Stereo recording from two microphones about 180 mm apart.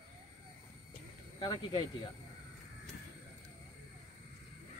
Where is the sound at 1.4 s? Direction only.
25° left (ahead or behind).